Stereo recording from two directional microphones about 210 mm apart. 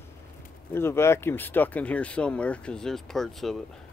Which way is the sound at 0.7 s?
10° left (ahead or behind).